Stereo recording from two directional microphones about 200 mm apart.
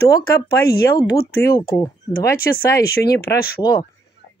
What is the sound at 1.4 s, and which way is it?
Speech, 15° left (ahead or behind).